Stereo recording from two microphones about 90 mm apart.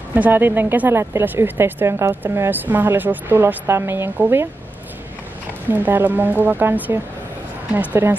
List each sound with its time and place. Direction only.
0.1 s speech: 20° right (ahead or behind)
5.7 s speech: 20° right (ahead or behind)